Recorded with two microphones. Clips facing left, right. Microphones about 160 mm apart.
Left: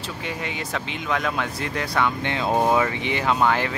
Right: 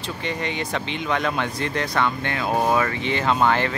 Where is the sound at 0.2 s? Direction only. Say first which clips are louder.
Right 4 dB; 5° left (ahead or behind).